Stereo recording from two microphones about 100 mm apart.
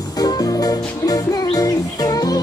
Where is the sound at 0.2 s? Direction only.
40° left (ahead or behind).